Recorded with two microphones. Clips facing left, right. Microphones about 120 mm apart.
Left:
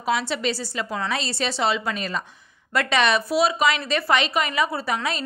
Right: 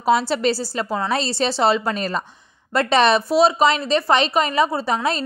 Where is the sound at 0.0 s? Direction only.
35° right (ahead or behind).